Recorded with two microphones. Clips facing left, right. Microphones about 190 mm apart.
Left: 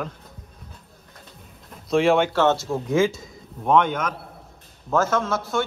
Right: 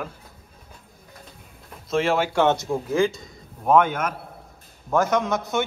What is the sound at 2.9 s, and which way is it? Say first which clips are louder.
A man's voice: left 2 dB; centre (ahead or behind).